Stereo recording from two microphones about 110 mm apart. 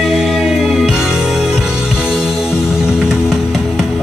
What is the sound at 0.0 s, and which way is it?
Music, 5° right (ahead or behind).